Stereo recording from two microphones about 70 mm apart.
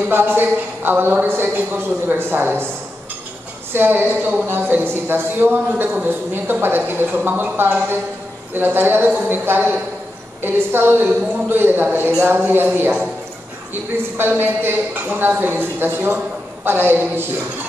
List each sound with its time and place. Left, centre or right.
0.1 s a woman's voice: right
3.7 s a woman's voice: right
14.1 s a woman's voice: right